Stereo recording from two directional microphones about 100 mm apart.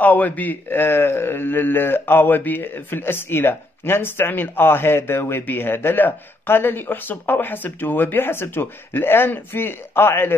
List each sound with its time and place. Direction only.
0.0 s a man's voice: 15° left (ahead or behind)